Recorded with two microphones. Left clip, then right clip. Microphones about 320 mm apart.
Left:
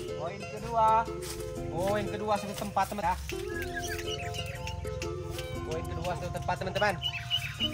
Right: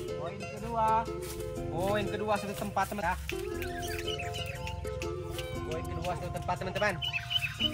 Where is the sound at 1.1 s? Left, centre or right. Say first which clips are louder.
Even; centre.